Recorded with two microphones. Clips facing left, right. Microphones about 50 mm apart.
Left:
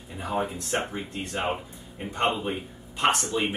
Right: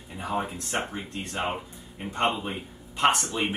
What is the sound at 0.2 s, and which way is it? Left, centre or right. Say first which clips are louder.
Speech: left 1 dB; centre.